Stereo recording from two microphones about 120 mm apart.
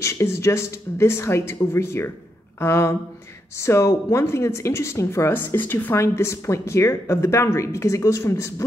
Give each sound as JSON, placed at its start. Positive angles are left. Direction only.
{"t": 0.0, "sound": "a woman's voice", "side_deg": 25}